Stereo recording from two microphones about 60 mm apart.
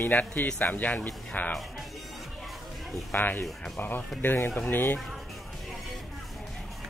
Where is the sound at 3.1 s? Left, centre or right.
Left.